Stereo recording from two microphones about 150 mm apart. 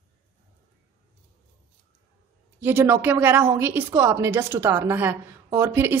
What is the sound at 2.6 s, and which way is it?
A woman's voice, 15° right (ahead or behind).